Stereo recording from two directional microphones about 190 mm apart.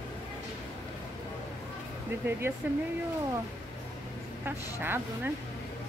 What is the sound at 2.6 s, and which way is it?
Speech, 10° right (ahead or behind).